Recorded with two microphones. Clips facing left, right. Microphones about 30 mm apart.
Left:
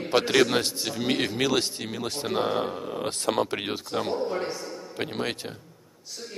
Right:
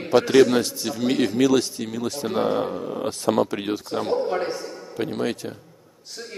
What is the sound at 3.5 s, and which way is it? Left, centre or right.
Speech, left.